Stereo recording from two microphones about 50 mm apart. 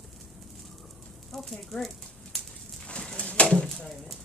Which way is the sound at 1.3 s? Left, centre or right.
Centre.